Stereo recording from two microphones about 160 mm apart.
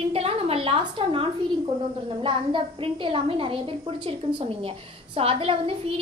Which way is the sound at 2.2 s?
30° right (ahead or behind).